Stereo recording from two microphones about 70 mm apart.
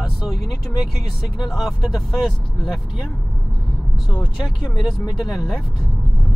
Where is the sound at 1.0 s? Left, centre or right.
Left.